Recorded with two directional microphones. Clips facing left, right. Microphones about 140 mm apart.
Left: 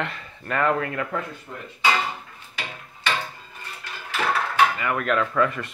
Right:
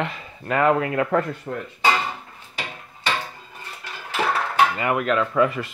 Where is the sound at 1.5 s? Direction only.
90° right.